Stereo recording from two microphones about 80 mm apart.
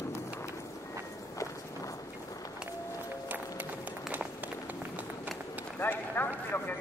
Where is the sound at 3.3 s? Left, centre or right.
Right.